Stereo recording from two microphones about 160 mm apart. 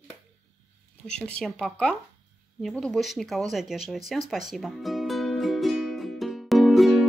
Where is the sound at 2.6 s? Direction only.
Centre (ahead or behind).